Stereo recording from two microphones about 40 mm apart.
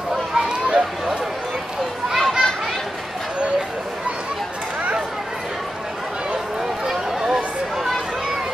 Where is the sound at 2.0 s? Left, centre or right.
Centre.